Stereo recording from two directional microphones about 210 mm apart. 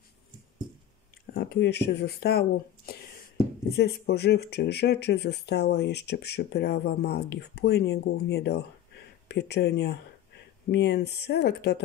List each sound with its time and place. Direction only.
1.3 s speech: 55° left (ahead or behind)
3.7 s speech: 50° left (ahead or behind)